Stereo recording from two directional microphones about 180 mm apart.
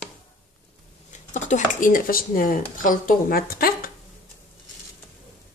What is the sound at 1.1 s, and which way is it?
Speech, 45° left (ahead or behind).